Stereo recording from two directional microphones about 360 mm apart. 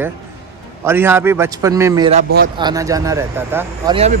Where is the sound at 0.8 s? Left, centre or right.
Centre.